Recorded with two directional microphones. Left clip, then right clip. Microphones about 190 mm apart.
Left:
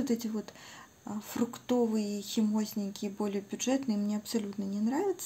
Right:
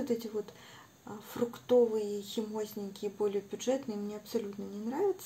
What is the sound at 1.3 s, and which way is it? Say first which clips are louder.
Speech: right 4 dB; 40° left (ahead or behind).